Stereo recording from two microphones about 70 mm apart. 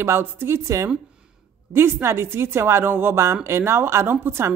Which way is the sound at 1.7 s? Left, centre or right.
Right.